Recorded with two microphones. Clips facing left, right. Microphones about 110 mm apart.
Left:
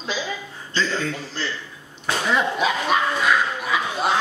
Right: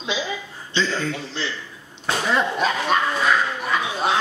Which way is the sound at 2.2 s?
5° left (ahead or behind).